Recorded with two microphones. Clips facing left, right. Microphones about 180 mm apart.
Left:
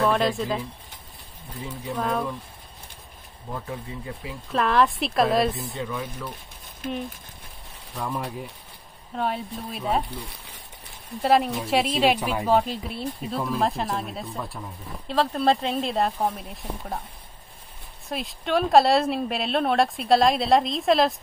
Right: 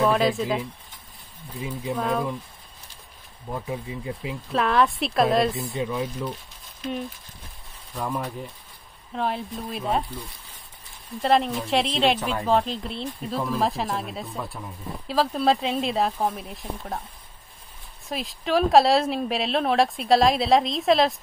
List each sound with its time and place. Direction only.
0.0 s speech: centre (ahead or behind)
1.6 s speech: 15° right (ahead or behind)
3.5 s speech: 15° right (ahead or behind)
4.5 s speech: centre (ahead or behind)
5.9 s speech: 25° right (ahead or behind)
7.9 s speech: centre (ahead or behind)
11.2 s speech: 5° left (ahead or behind)
18.0 s speech: centre (ahead or behind)